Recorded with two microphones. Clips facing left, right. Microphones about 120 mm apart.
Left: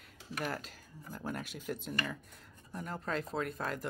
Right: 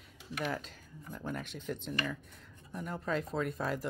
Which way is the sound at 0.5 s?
5° left (ahead or behind).